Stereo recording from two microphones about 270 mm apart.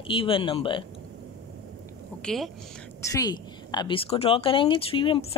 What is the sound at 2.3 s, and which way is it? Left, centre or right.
Speech, centre.